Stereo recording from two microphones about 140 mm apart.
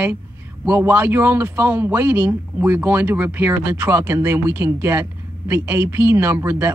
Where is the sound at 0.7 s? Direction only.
15° right (ahead or behind).